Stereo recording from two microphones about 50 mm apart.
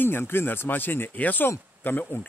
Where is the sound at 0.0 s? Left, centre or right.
Left.